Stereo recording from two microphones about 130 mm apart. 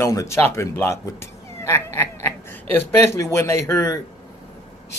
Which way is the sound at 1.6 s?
20° left (ahead or behind).